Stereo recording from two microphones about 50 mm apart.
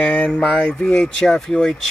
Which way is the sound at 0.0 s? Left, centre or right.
Left.